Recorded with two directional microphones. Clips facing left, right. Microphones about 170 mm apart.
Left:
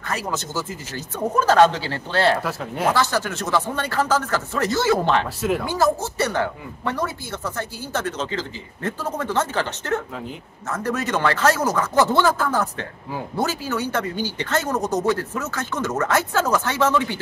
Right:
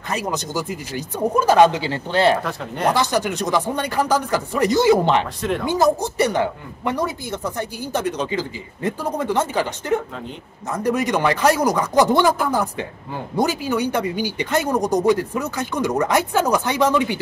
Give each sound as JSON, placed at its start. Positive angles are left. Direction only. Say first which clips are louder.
{"t": 0.1, "sound": "speech", "louder": "right 3 dB", "side_deg": -15}
{"t": 2.4, "sound": "speech", "louder": "right 1 dB", "side_deg": 5}
{"t": 2.9, "sound": "speech", "louder": "right 2 dB", "side_deg": -15}